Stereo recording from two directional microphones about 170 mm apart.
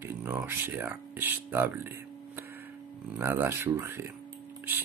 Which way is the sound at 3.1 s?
15° right (ahead or behind).